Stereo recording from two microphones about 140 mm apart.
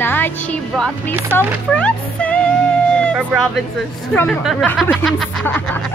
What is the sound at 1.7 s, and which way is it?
Music, 10° left (ahead or behind).